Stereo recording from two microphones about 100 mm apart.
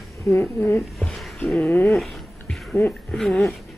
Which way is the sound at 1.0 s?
5° left (ahead or behind).